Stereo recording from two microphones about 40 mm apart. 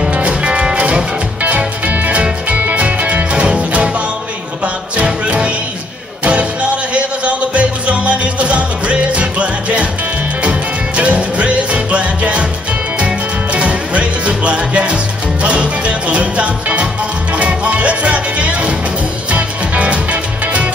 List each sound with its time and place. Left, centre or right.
0.1 s music: right
3.4 s music: right
5.0 s music: right
11.0 s music: right